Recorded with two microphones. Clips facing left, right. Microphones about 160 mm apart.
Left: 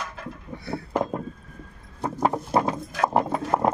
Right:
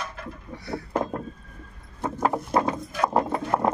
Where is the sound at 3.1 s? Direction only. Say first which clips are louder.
Even; 5° left (ahead or behind).